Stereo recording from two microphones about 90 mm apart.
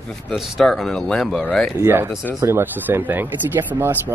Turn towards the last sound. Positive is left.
turn(degrees=-20)  # may be behind; listen again after turning